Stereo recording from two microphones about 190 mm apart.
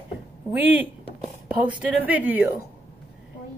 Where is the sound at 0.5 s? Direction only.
10° right (ahead or behind).